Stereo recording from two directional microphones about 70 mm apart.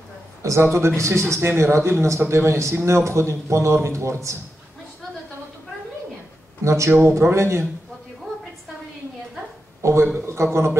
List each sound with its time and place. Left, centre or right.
0.4 s speech: right
6.6 s speech: right
9.8 s a sound: right
10.1 s speech: right